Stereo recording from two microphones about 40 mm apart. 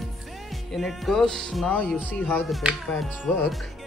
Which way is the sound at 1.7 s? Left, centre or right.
Left.